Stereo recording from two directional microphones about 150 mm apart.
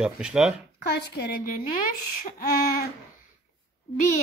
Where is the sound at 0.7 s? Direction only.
90° left.